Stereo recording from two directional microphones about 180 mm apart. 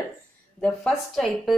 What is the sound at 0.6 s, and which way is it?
Speech, centre (ahead or behind).